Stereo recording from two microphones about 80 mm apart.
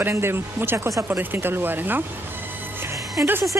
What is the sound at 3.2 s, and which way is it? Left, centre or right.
Speech, right.